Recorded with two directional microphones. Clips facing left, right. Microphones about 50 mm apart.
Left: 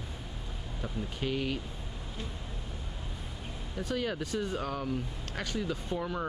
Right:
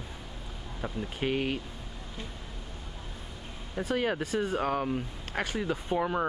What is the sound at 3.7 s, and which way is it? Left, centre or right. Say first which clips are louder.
Speech: right 4 dB; right.